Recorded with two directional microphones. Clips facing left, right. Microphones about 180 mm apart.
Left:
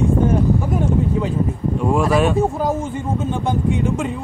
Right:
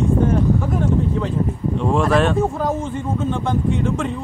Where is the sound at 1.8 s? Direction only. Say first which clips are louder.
Even; 5° left (ahead or behind).